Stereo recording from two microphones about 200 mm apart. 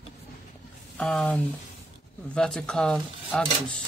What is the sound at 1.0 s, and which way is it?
Speech, 5° left (ahead or behind).